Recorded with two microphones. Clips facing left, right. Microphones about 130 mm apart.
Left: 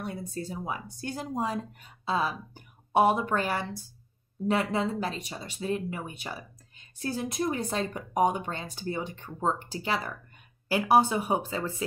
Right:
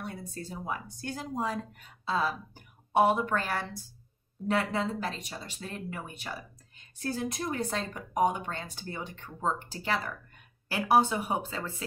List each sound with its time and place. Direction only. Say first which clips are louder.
0.3 s speech: left 2 dB; 15° left (ahead or behind)